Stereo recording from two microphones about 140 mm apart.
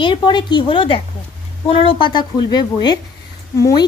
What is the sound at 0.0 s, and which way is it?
Speech, 35° left (ahead or behind).